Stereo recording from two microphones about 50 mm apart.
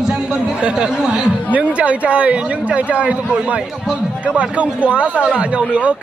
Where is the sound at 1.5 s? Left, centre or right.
Right.